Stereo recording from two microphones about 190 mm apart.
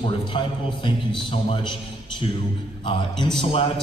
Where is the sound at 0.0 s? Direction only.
25° left (ahead or behind).